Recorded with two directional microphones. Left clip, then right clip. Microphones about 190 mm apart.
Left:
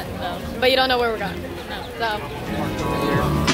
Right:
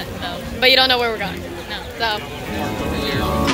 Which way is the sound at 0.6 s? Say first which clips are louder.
Right 4 dB; centre (ahead or behind).